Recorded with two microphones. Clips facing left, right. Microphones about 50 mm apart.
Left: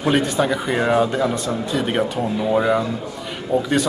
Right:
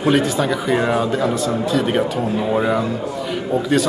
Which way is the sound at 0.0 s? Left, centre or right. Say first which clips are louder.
Right 2 dB; centre.